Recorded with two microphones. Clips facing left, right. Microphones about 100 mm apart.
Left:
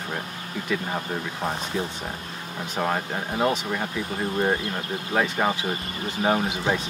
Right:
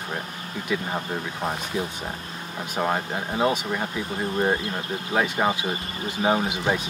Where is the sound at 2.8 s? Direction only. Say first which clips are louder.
Right 1 dB; 10° right (ahead or behind).